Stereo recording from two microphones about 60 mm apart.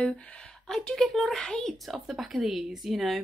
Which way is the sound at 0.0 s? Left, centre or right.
Centre.